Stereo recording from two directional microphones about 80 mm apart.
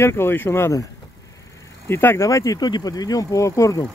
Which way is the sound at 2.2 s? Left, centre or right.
Left.